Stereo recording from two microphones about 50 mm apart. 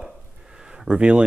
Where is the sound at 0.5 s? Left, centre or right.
Centre.